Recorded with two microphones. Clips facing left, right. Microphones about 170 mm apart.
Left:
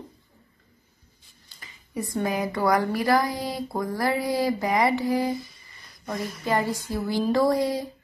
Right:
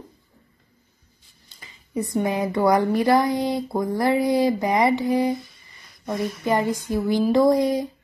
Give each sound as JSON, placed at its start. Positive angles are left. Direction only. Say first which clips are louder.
{"t": 1.5, "sound": "speech", "louder": "right 7 dB", "side_deg": -20}
{"t": 5.3, "sound": "humming", "louder": "right 3 dB", "side_deg": 0}
{"t": 6.4, "sound": "a sound", "louder": "right 2 dB", "side_deg": -20}
{"t": 7.1, "sound": "speech", "louder": "right 4 dB", "side_deg": -20}